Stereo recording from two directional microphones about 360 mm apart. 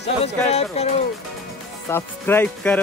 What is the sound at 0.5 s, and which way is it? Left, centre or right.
Speech, centre.